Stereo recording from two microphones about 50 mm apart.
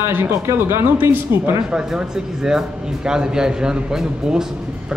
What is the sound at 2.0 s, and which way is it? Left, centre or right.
Speech, centre.